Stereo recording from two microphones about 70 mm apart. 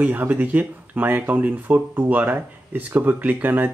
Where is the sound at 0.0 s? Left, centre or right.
Right.